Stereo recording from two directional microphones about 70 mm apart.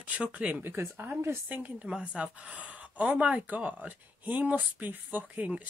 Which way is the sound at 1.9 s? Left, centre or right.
Centre.